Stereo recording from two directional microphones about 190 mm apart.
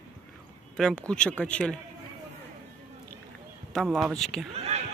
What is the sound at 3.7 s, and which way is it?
Speech, centre (ahead or behind).